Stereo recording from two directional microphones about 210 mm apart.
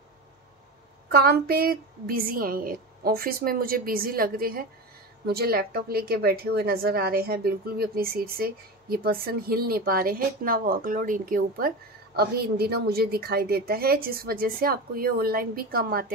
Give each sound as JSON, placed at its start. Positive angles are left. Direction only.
{"t": 1.1, "sound": "a woman's voice", "side_deg": -45}